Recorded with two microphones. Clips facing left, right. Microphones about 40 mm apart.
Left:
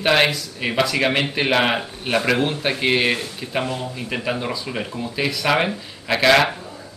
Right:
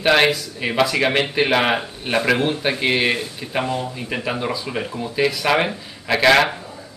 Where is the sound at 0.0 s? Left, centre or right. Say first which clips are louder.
Right 2 dB; centre.